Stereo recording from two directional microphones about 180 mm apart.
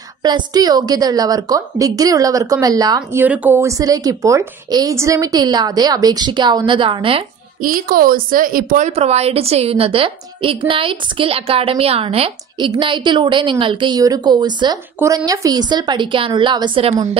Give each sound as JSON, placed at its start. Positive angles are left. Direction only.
{"t": 0.2, "sound": "a woman's voice", "side_deg": -20}
{"t": 7.6, "sound": "a woman's voice", "side_deg": -55}